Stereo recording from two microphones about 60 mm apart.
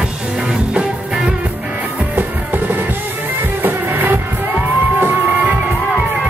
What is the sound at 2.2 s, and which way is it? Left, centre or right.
Music, right.